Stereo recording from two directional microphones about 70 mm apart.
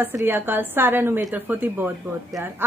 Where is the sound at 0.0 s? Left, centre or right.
Right.